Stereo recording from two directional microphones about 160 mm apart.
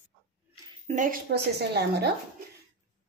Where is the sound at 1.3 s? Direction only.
90° right.